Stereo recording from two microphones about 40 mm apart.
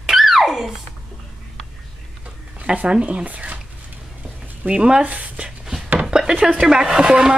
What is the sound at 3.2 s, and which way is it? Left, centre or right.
Speech, right.